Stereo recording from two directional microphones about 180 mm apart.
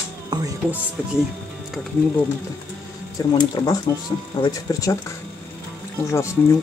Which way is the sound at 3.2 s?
20° left (ahead or behind).